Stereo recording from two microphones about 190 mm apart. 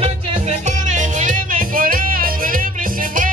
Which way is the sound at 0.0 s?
30° right (ahead or behind).